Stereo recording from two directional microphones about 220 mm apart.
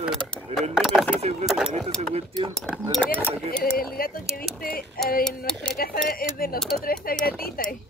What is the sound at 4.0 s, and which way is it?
Speech, 40° left (ahead or behind).